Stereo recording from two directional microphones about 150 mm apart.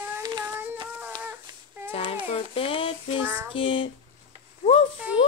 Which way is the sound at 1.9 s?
40° left (ahead or behind).